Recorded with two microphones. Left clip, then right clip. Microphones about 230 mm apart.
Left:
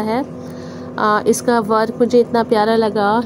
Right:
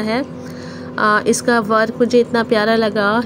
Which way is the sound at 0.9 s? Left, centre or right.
Right.